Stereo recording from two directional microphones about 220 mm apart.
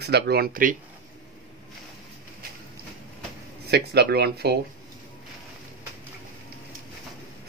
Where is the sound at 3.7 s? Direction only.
50° right (ahead or behind).